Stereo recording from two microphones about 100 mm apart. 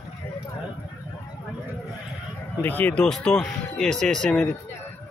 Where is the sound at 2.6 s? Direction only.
20° left (ahead or behind).